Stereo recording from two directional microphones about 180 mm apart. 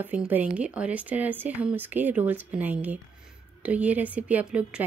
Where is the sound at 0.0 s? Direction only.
10° right (ahead or behind).